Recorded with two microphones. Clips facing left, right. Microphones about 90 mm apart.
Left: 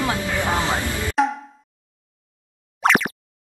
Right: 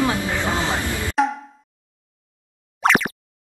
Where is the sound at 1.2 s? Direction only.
Centre (ahead or behind).